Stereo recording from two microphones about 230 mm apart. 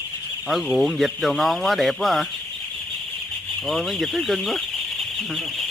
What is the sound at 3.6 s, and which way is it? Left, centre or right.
Speech, centre.